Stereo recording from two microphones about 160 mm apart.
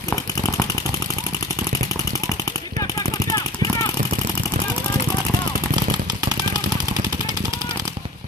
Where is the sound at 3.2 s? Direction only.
20° left (ahead or behind).